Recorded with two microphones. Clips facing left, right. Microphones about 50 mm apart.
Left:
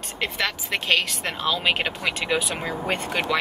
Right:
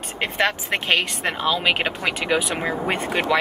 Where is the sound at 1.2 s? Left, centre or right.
Centre.